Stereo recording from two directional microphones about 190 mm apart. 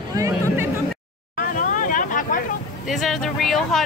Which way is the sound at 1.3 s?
45° left (ahead or behind).